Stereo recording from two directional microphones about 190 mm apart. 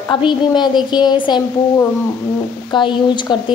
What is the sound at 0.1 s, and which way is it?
A woman's voice, 25° left (ahead or behind).